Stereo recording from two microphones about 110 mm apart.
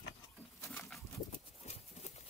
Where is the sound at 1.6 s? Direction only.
90° left.